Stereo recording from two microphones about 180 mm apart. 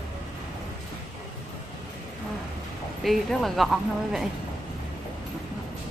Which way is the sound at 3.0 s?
Centre (ahead or behind).